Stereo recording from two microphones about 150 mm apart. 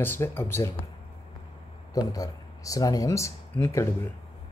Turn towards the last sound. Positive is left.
turn(degrees=20)  # may be behind; listen again after turning